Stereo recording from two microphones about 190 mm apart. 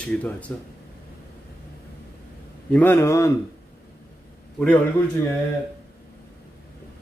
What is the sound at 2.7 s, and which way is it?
Speech, 10° left (ahead or behind).